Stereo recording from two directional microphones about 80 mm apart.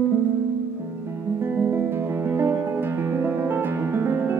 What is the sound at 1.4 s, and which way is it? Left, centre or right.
Music, right.